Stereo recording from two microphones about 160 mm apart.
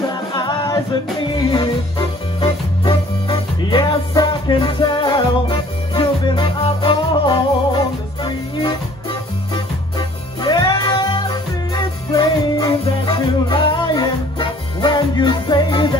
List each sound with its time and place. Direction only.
0.4 s a capella: 30° left (ahead or behind)
1.3 s music: 30° left (ahead or behind)